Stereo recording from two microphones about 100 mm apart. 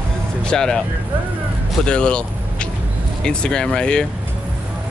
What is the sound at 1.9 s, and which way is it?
Vehicle, 10° left (ahead or behind).